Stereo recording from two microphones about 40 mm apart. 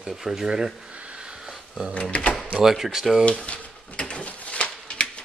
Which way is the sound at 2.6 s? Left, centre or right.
Centre.